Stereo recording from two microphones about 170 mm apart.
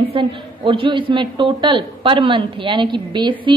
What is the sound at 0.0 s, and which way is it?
A man's voice, 30° right (ahead or behind).